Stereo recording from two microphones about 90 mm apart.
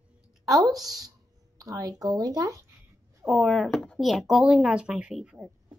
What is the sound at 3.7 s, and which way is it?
Speech, 10° left (ahead or behind).